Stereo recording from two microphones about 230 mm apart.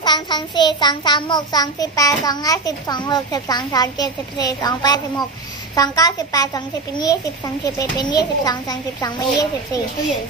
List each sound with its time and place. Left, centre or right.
0.0 s a child's voice: centre